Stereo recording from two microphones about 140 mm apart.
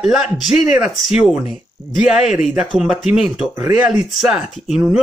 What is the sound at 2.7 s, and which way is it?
A man's voice, centre (ahead or behind).